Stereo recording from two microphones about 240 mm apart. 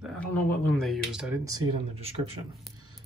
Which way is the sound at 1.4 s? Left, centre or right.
Centre.